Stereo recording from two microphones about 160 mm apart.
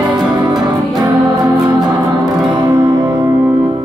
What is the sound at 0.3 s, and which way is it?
Music, 25° right (ahead or behind).